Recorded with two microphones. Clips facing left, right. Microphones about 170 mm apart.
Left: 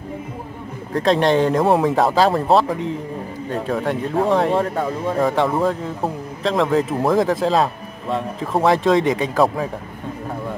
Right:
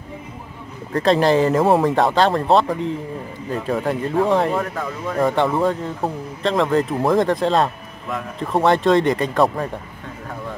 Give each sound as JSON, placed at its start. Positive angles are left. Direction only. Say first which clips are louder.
{"t": 0.9, "sound": "speech", "louder": "even", "side_deg": 0}
{"t": 4.6, "sound": "speech", "louder": "left 4 dB", "side_deg": 30}
{"t": 5.2, "sound": "speech", "louder": "right 1 dB", "side_deg": 0}